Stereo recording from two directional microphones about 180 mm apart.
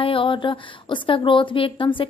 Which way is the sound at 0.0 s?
30° left (ahead or behind).